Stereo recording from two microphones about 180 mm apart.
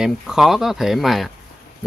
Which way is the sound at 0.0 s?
Centre (ahead or behind).